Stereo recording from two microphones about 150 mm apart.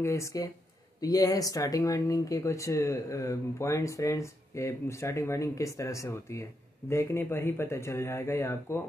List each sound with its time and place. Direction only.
0.0 s speech: 20° left (ahead or behind)